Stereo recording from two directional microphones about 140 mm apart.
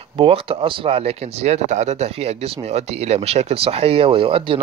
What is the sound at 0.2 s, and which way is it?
Speech, 40° right (ahead or behind).